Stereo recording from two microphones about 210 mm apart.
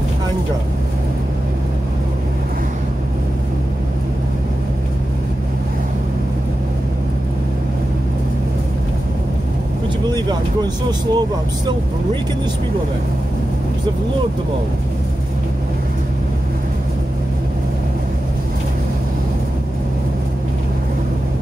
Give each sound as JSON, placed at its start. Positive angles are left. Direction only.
{"t": 10.0, "sound": "speech", "side_deg": -20}